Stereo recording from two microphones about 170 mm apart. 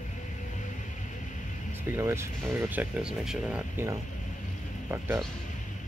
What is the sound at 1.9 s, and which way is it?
Speech, 15° right (ahead or behind).